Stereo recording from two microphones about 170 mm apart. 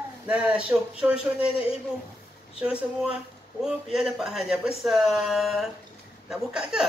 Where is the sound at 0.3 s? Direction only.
5° right (ahead or behind).